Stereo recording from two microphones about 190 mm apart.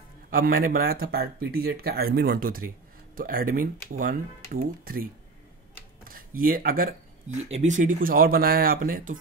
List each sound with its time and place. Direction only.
0.3 s speech: 50° right (ahead or behind)
7.4 s speech: 35° right (ahead or behind)